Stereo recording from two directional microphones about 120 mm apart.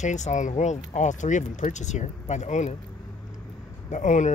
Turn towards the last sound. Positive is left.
turn(degrees=90)